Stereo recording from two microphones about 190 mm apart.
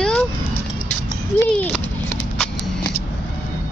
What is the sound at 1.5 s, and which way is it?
Speech, 5° left (ahead or behind).